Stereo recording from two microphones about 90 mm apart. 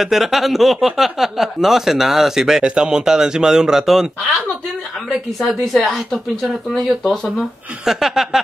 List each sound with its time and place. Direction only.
0.0 s speech: centre (ahead or behind)
5.4 s speech: centre (ahead or behind)